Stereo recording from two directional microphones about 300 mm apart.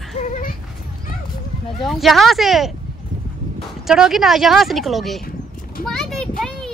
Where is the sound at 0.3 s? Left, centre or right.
Left.